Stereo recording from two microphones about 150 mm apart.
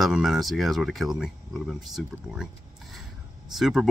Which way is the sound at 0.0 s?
5° right (ahead or behind).